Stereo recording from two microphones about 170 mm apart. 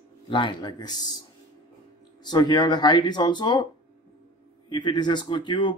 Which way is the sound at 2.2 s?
25° left (ahead or behind).